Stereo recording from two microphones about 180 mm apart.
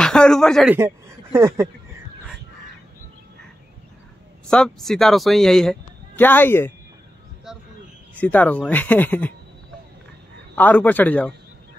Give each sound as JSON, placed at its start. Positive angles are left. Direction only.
{"t": 0.0, "sound": "speech", "side_deg": 5}
{"t": 0.7, "sound": "speech", "side_deg": -15}
{"t": 4.5, "sound": "speech", "side_deg": 5}
{"t": 7.5, "sound": "a sound", "side_deg": 0}
{"t": 8.1, "sound": "speech", "side_deg": 10}
{"t": 10.5, "sound": "speech", "side_deg": 10}